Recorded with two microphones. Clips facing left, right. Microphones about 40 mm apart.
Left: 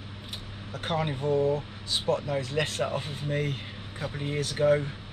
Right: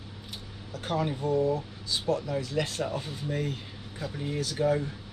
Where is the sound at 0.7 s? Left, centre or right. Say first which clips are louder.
Even; left.